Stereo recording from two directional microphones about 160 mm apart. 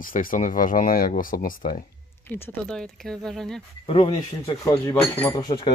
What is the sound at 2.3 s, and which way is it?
Speech, 15° left (ahead or behind).